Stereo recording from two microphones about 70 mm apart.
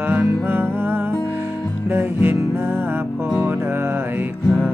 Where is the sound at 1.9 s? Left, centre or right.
Right.